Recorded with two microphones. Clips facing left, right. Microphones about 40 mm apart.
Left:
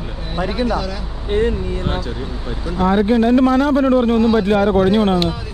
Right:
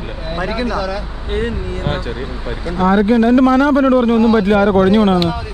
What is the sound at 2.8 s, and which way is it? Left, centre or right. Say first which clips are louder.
A man's voice: right 2 dB; right.